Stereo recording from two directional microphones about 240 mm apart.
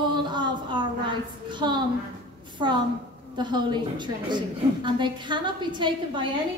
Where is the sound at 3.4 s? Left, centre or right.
Centre.